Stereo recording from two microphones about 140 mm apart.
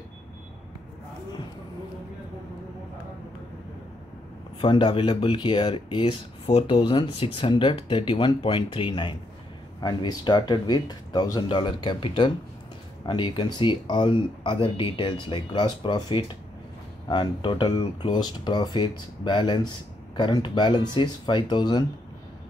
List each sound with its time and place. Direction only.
4.6 s speech: 35° left (ahead or behind)